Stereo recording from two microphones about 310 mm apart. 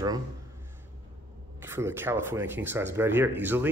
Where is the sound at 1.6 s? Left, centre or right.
Centre.